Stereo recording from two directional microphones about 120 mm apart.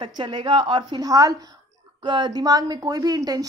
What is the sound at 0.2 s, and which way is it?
Speech, 45° right (ahead or behind).